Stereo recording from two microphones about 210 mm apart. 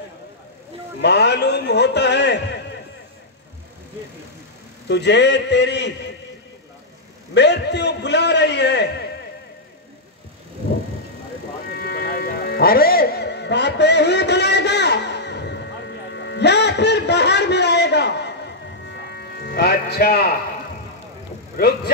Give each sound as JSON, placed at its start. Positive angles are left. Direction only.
{"t": 1.0, "sound": "a man's voice", "side_deg": 55}
{"t": 4.8, "sound": "a man's voice", "side_deg": 55}
{"t": 7.3, "sound": "a man's voice", "side_deg": 55}
{"t": 11.6, "sound": "music", "side_deg": 50}
{"t": 21.5, "sound": "speech", "side_deg": 45}